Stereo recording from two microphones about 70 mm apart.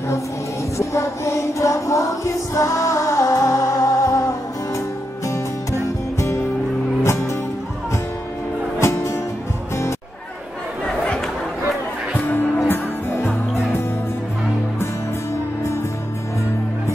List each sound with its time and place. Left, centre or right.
0.7 s music: left
8.7 s music: left
12.6 s music: left